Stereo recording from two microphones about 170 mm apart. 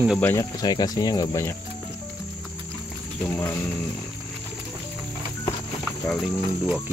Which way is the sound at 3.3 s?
10° left (ahead or behind).